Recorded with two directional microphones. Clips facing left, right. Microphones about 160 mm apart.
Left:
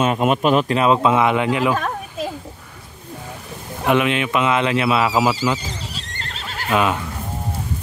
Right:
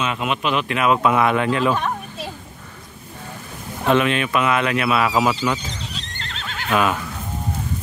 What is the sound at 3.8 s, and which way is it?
Speech, 15° left (ahead or behind).